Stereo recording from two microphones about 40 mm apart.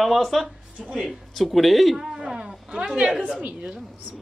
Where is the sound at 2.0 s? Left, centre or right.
Centre.